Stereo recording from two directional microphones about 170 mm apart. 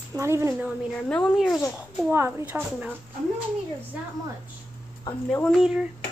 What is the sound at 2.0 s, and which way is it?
Speech, 10° right (ahead or behind).